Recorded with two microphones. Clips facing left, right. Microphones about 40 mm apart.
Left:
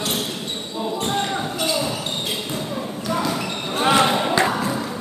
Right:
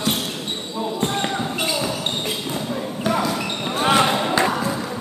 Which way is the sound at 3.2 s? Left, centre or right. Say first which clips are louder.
Right 1 dB; centre.